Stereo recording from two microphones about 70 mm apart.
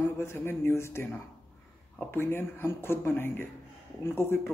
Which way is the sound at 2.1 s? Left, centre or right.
Left.